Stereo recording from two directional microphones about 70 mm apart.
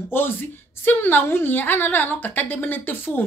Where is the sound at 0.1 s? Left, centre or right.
Left.